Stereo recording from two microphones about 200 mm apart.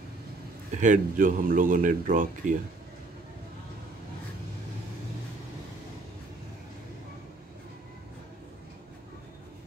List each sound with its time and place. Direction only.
0.7 s speech: 40° right (ahead or behind)